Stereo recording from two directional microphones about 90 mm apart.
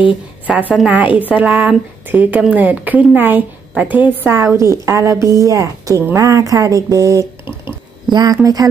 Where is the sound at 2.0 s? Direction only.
20° right (ahead or behind).